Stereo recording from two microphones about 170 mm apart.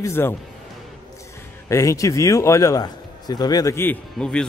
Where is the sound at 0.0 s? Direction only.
15° left (ahead or behind).